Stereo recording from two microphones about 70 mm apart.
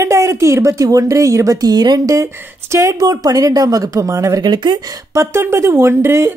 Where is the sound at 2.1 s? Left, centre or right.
Right.